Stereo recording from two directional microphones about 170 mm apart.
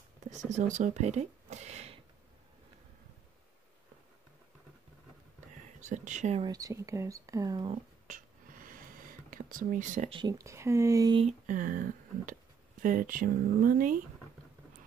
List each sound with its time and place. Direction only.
0.3 s speech: 45° right (ahead or behind)
5.8 s speech: 45° right (ahead or behind)
6.4 s speech: 20° right (ahead or behind)
8.1 s whispering: 55° right (ahead or behind)
10.0 s speech: 25° right (ahead or behind)
11.1 s speech: 45° right (ahead or behind)